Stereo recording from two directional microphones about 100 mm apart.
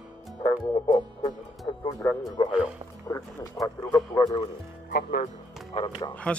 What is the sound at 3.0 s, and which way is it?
Speech, 35° left (ahead or behind).